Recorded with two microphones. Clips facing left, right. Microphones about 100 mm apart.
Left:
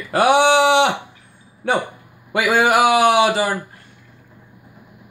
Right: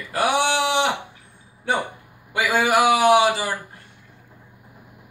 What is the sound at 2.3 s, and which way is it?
A man's voice, 90° left.